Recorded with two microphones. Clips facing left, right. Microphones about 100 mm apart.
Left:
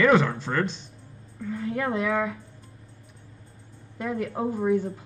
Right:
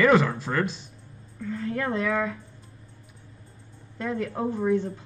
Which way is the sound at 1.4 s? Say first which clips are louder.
Left 1 dB; 15° left (ahead or behind).